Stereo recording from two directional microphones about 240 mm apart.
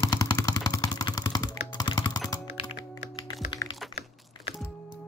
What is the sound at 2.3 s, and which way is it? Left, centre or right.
Computer keyboard, centre.